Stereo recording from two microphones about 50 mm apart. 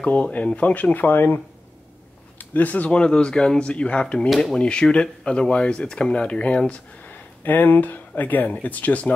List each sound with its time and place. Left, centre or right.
0.0 s speech: left